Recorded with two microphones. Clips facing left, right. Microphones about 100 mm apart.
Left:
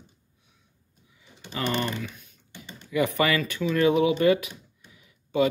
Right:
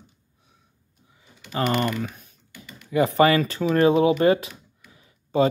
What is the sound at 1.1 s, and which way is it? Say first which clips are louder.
Typing: right 6 dB; 35° right (ahead or behind).